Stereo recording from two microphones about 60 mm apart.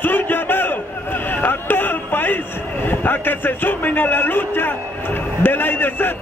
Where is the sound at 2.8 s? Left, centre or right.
Left.